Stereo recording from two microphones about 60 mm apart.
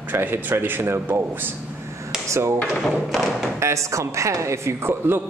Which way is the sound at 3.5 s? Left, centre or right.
Right.